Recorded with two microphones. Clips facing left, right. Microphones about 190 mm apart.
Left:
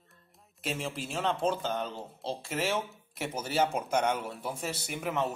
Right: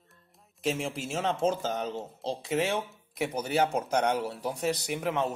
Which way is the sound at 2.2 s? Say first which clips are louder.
Right 3 dB; centre (ahead or behind).